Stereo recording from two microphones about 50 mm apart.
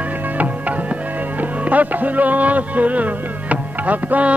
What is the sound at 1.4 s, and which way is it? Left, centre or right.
Music, right.